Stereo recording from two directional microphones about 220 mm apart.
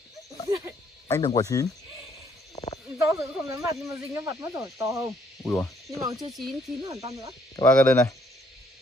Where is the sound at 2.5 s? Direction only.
30° left (ahead or behind).